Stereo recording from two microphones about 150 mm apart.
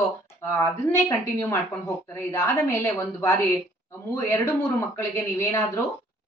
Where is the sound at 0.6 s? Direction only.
20° left (ahead or behind).